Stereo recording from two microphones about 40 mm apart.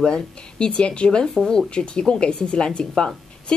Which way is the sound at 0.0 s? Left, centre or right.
Left.